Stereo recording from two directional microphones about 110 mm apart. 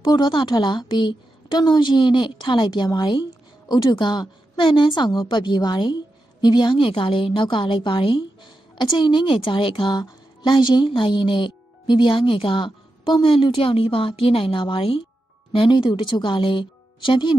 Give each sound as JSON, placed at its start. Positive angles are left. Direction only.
{"t": 0.0, "sound": "a woman's voice", "side_deg": 45}